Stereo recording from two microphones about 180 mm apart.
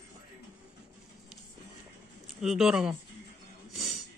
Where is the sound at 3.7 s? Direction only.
Centre (ahead or behind).